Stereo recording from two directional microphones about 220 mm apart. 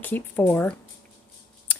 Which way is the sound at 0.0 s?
10° left (ahead or behind).